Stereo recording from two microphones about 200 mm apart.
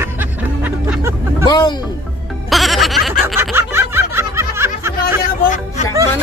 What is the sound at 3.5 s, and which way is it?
Music, 10° right (ahead or behind).